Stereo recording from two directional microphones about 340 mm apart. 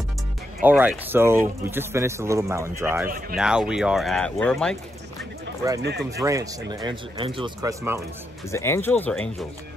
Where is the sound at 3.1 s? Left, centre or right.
Right.